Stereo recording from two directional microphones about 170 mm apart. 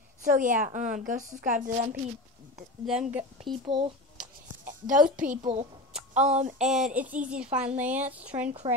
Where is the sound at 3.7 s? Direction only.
25° right (ahead or behind).